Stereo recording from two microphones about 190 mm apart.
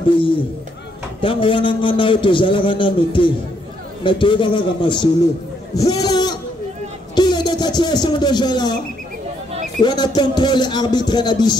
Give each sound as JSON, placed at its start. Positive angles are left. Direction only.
{"t": 1.2, "sound": "a man's voice", "side_deg": 25}
{"t": 9.8, "sound": "a man's voice", "side_deg": 20}